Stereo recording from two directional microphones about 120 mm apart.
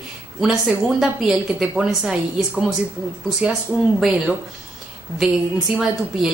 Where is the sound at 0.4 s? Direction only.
5° right (ahead or behind).